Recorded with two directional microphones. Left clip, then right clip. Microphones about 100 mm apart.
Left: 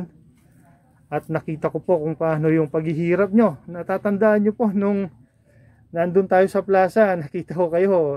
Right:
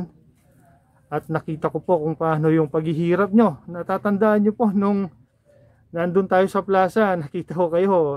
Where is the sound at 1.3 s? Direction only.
20° right (ahead or behind).